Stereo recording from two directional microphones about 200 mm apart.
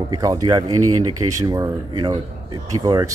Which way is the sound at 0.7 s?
90° right.